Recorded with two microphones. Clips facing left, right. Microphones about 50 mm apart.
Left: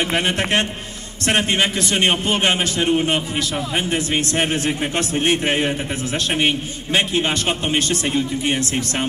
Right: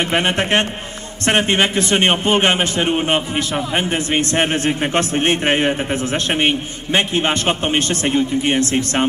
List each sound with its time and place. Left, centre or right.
0.0 s a man's voice: right